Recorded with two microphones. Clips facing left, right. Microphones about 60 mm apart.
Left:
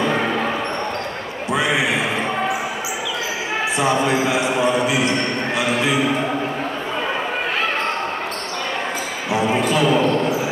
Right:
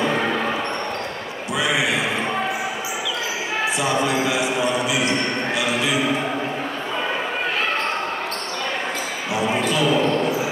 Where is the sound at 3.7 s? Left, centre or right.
Left.